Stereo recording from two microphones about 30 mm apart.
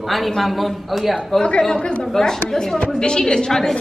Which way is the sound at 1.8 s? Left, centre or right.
Left.